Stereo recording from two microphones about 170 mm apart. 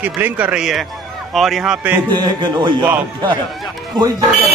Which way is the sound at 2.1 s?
25° right (ahead or behind).